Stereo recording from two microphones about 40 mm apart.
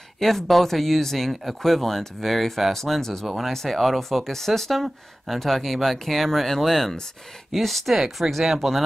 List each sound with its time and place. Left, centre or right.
0.2 s speech: centre
3.3 s speech: centre
3.5 s speech: centre